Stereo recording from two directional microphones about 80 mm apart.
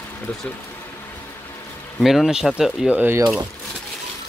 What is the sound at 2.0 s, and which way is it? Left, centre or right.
Speech, centre.